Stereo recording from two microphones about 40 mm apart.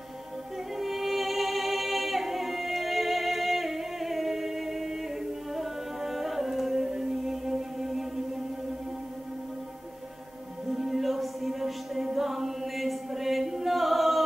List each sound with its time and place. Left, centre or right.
0.7 s music: centre
5.5 s singing: centre
6.9 s music: centre
10.7 s music: centre